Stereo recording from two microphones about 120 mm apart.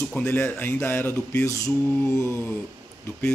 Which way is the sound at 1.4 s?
25° left (ahead or behind).